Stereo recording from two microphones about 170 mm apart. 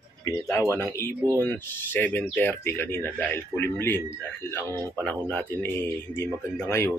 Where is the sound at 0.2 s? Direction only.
20° left (ahead or behind).